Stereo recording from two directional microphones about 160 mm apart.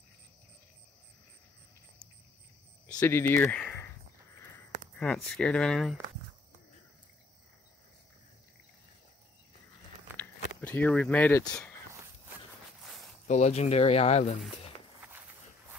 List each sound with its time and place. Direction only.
3.0 s speech: 10° left (ahead or behind)
4.9 s speech: 5° left (ahead or behind)
10.1 s a sound: 10° left (ahead or behind)
13.3 s speech: 45° left (ahead or behind)